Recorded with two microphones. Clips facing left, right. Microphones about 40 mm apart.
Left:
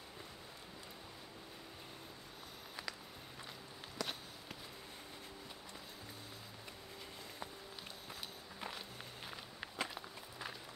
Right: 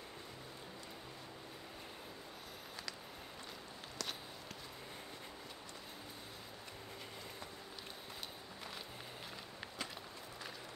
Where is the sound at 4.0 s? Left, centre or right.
Centre.